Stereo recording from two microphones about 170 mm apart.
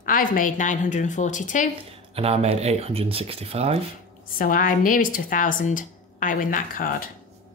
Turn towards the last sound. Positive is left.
turn(degrees=50)  # may be behind; listen again after turning